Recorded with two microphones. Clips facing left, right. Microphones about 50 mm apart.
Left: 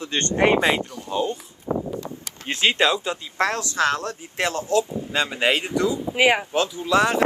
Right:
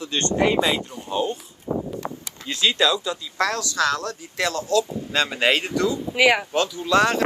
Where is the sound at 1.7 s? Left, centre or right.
Left.